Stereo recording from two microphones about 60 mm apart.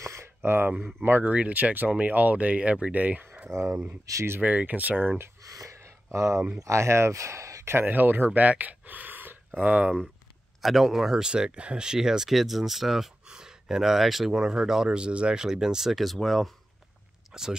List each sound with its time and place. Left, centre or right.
0.0 s a sound: right
0.7 s speech: centre
1.0 s speech: right
3.4 s speech: right
4.0 s speech: right
4.4 s speech: right
5.4 s a sound: right
6.6 s speech: right
7.7 s speech: right
10.6 s speech: centre
17.3 s speech: centre